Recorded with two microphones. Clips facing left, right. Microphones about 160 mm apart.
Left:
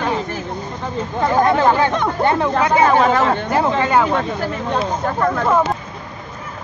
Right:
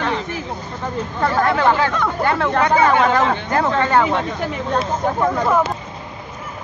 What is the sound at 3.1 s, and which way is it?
Speech, 5° left (ahead or behind).